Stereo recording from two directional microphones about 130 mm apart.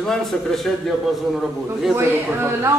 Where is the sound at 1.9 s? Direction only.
15° right (ahead or behind).